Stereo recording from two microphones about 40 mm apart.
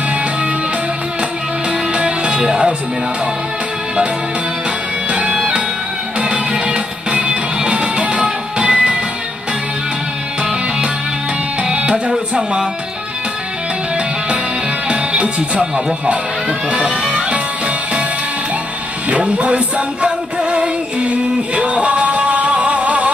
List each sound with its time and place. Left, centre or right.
2.0 s music: right
5.3 s music: centre
11.6 s music: right
12.1 s speech: centre
14.9 s music: right
16.7 s music: right
19.0 s music: right